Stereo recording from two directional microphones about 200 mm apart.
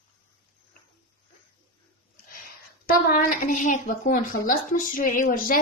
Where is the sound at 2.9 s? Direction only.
45° left (ahead or behind).